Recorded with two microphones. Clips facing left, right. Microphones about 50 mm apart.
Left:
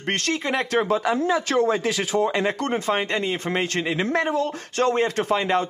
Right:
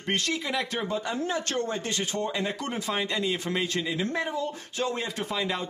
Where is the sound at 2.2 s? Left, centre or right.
Left.